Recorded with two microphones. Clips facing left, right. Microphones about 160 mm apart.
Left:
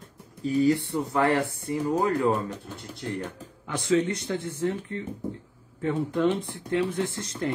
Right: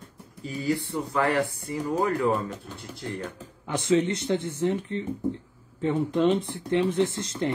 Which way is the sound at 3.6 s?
20° right (ahead or behind).